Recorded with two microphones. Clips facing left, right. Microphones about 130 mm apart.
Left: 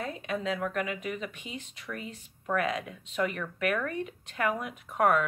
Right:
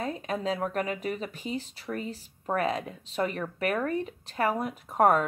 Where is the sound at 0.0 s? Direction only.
35° right (ahead or behind).